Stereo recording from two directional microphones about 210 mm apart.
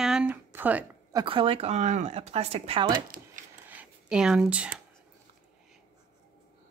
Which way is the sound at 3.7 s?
5° right (ahead or behind).